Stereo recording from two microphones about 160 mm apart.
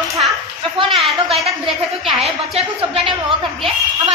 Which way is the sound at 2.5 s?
40° right (ahead or behind).